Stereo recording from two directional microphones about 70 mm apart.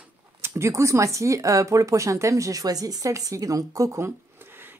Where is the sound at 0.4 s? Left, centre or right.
Right.